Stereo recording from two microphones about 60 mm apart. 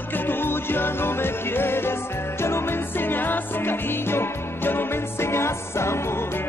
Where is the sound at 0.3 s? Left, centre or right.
Left.